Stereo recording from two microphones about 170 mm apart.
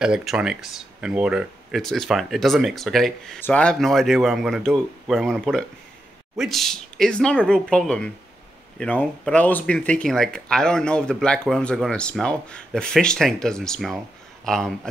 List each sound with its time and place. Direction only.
0.0 s speech: 5° right (ahead or behind)